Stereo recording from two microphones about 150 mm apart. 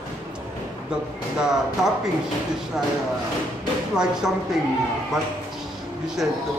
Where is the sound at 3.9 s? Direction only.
5° right (ahead or behind).